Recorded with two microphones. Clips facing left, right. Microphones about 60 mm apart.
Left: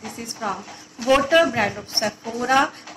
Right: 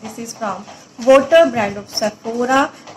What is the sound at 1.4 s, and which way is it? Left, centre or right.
Speech, right.